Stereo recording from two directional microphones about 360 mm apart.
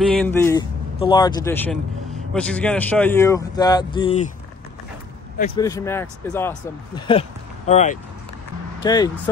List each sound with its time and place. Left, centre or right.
0.1 s speech: centre
5.6 s speech: centre